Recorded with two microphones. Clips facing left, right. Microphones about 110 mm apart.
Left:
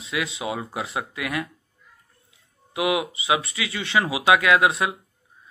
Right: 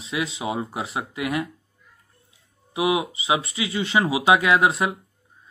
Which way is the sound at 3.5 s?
30° right (ahead or behind).